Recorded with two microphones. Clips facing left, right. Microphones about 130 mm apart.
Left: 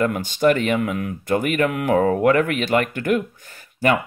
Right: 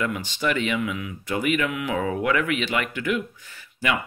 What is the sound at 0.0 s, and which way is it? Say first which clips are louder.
Speech: left 8 dB; 45° left (ahead or behind).